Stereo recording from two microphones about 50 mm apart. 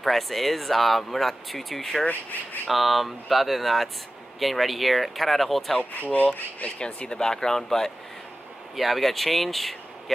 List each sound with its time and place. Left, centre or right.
0.0 s speech: centre
5.9 s speech: left
6.8 s speech: centre
8.7 s speech: centre